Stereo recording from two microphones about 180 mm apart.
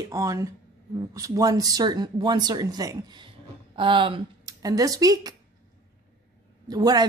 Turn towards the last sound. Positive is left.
turn(degrees=-20)  # may be behind; listen again after turning